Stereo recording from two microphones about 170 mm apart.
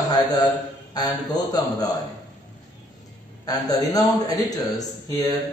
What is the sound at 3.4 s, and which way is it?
A man's voice, 20° left (ahead or behind).